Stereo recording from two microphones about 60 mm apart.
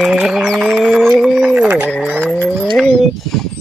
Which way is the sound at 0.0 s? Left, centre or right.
Centre.